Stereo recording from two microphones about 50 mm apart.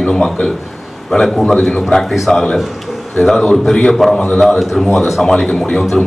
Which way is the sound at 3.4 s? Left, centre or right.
Centre.